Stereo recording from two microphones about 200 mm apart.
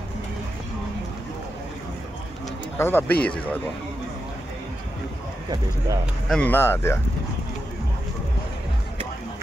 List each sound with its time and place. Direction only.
2.8 s speech: 10° left (ahead or behind)
6.2 s speech: 5° left (ahead or behind)